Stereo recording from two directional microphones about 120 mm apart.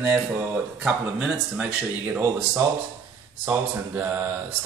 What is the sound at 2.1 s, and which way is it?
A man's voice, 20° right (ahead or behind).